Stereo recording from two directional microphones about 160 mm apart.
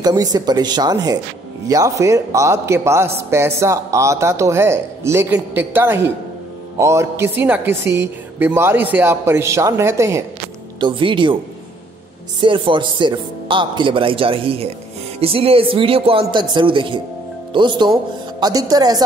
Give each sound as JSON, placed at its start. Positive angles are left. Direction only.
{"t": 0.0, "sound": "a man's voice", "side_deg": -25}
{"t": 10.8, "sound": "speech", "side_deg": -30}
{"t": 12.4, "sound": "speech", "side_deg": -30}